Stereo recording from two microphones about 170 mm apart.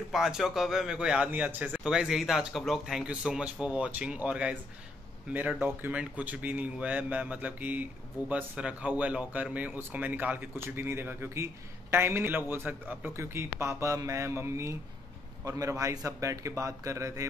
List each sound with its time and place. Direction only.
0.1 s a man's voice: centre (ahead or behind); by 17.3 s 20° right (ahead or behind)